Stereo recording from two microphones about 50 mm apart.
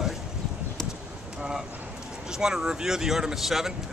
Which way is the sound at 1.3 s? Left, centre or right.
Centre.